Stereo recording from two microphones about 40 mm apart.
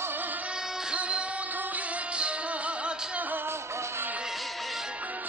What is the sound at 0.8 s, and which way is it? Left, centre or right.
Music, right.